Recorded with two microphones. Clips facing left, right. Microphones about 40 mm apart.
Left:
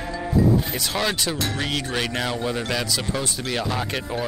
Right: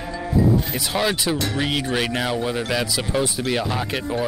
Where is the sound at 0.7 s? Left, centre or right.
Centre.